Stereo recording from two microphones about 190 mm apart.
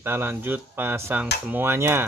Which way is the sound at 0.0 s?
10° right (ahead or behind).